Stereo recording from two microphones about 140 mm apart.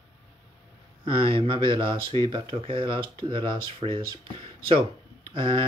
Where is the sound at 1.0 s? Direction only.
40° right (ahead or behind).